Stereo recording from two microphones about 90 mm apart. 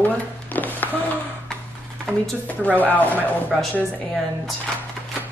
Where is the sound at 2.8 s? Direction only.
20° left (ahead or behind).